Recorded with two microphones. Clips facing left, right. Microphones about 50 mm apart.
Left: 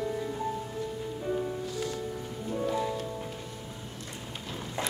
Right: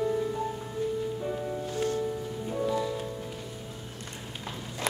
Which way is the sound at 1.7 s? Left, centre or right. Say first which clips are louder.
Right 5 dB; right.